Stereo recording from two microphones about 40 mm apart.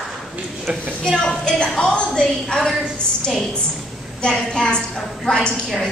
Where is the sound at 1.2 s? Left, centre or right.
Centre.